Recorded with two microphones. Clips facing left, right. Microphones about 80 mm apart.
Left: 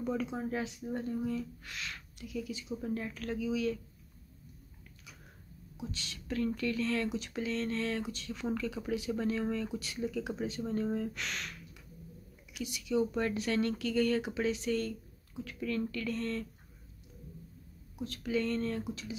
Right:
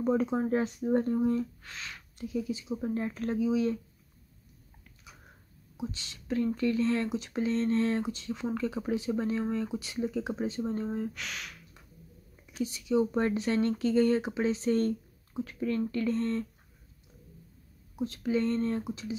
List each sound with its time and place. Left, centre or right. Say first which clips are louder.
0.0 s speech: right 7 dB; right
5.8 s speech: right 4 dB; right
11.1 s speech: left 1 dB; centre
12.5 s speech: right 4 dB; right
17.9 s speech: right 4 dB; right